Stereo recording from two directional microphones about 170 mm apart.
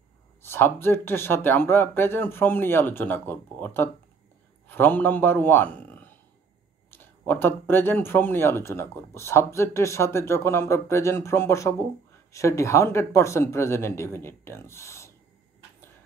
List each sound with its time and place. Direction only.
0.4 s a man's voice: 15° left (ahead or behind)